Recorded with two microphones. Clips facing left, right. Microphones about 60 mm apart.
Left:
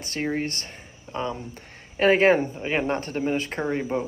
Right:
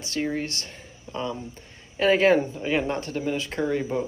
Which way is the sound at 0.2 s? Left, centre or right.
Left.